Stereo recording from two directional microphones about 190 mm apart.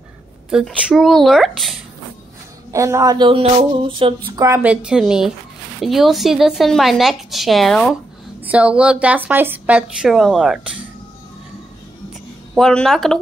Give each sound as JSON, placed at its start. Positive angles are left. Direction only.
{"t": 0.5, "sound": "speech", "side_deg": -5}
{"t": 2.7, "sound": "speech", "side_deg": -15}
{"t": 4.5, "sound": "a woman's voice", "side_deg": -10}
{"t": 12.5, "sound": "speech", "side_deg": 0}